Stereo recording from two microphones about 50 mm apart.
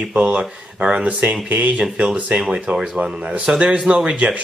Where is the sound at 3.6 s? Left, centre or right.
Centre.